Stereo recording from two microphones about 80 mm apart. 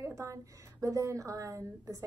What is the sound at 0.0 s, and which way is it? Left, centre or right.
A woman's voice, right.